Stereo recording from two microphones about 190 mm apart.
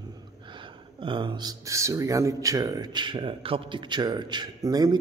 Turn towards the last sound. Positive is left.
turn(degrees=-20)  # may be behind; listen again after turning